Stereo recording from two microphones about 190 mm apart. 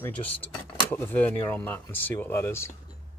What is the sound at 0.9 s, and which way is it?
Speech, 10° left (ahead or behind).